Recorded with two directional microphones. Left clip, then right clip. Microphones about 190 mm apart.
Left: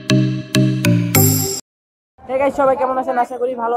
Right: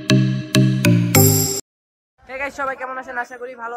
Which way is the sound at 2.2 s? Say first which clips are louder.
Left 10 dB; 45° right (ahead or behind).